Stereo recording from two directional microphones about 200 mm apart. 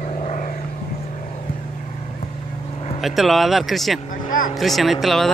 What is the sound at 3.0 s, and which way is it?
Speech, centre (ahead or behind).